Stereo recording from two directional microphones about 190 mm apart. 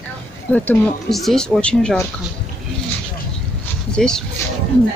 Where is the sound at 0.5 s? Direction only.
5° left (ahead or behind).